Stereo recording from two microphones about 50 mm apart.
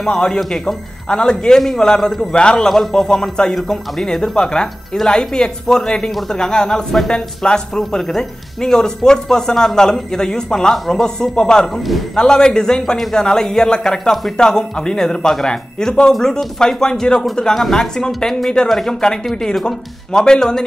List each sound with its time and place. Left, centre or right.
0.0 s speech: centre
0.4 s speech: centre
1.0 s a man's voice: centre